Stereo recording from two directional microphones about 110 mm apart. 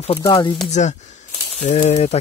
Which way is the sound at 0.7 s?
90° left.